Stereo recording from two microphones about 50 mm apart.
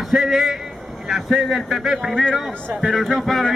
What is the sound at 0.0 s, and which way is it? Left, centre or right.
A man's voice, centre.